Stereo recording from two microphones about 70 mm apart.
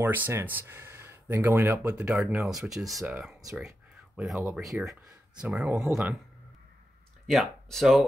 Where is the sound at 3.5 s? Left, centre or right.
Centre.